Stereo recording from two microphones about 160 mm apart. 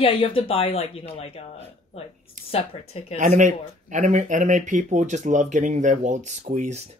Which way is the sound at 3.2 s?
50° right (ahead or behind).